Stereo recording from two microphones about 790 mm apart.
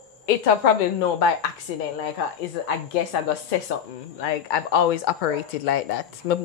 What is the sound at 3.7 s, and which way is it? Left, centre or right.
Speech, left.